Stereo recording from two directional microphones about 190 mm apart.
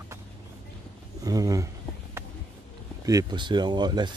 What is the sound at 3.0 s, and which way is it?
Speech, 20° right (ahead or behind).